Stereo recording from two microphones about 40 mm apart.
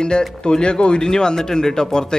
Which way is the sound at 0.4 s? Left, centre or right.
Left.